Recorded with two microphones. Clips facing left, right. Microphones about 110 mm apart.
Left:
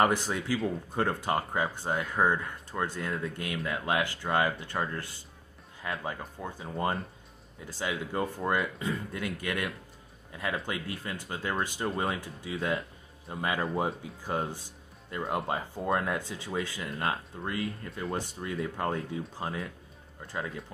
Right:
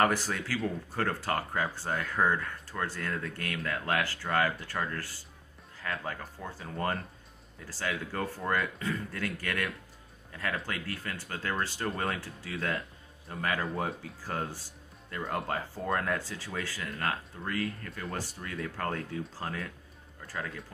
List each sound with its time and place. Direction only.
0.0 s speech: 20° left (ahead or behind)